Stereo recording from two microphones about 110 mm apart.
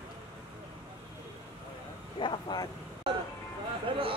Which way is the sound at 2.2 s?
45° left (ahead or behind).